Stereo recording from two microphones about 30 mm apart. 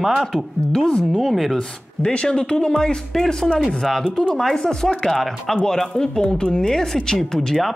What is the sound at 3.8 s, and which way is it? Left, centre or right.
Speech, centre.